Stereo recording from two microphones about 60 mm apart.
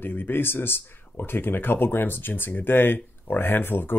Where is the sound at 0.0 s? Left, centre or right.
Left.